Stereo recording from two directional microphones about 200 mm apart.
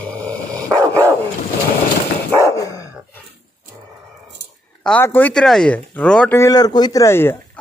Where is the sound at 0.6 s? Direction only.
15° right (ahead or behind).